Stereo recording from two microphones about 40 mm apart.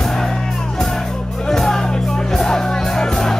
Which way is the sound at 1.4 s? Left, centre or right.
Centre.